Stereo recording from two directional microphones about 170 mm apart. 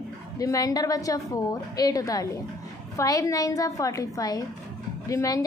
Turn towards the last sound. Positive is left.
turn(degrees=20)  # may be behind; listen again after turning